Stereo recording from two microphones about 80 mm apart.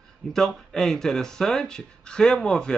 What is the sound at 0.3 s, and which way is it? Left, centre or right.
Speech, centre.